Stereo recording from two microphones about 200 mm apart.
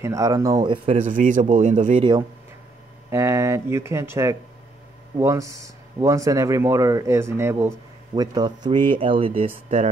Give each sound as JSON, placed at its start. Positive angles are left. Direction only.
{"t": 0.0, "sound": "speech", "side_deg": -15}
{"t": 1.0, "sound": "a man's voice", "side_deg": -40}
{"t": 3.1, "sound": "speech", "side_deg": -15}